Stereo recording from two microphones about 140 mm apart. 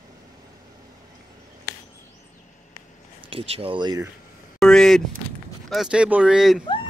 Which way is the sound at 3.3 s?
40° right (ahead or behind).